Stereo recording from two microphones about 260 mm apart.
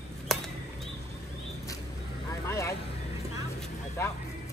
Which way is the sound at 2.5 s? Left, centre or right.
Centre.